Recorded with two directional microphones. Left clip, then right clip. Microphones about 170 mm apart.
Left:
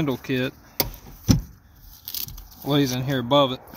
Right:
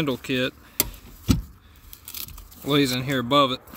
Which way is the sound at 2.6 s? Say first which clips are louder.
Right 1 dB; 25° right (ahead or behind).